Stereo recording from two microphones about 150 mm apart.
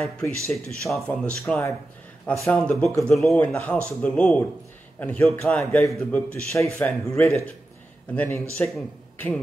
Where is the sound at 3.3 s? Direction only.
10° left (ahead or behind).